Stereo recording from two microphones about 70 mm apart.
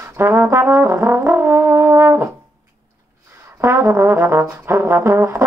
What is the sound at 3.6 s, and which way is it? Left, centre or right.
Brass instrument, right.